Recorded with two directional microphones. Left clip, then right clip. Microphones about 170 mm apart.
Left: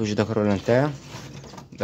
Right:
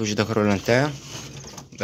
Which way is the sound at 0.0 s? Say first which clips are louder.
Right 1 dB; 20° left (ahead or behind).